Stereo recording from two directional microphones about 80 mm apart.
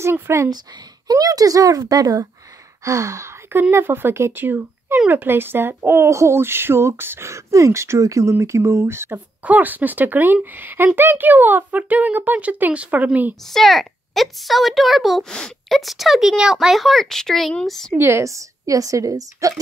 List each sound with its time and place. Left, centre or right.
0.0 s speech: right
1.1 s a woman's voice: right
9.4 s speech: centre
13.5 s a woman's voice: centre
17.9 s a woman's voice: right